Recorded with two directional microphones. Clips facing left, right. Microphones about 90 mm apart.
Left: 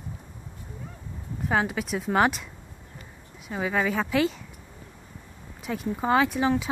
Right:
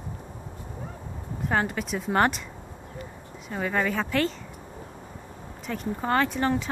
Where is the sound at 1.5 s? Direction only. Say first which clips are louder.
Left 1 dB; 5° left (ahead or behind).